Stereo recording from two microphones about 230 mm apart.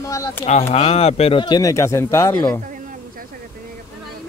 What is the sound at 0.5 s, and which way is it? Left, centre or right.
Speech, left.